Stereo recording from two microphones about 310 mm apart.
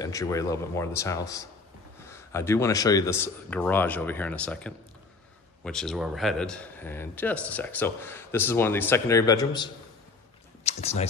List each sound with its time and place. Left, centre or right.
0.0 s speech: centre